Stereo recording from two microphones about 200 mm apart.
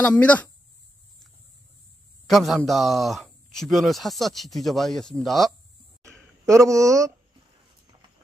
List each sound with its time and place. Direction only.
0.0 s speech: 5° left (ahead or behind)
2.2 s speech: centre (ahead or behind)
6.0 s a sound: 15° right (ahead or behind)